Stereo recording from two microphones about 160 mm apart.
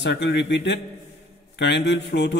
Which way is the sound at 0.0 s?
90° left.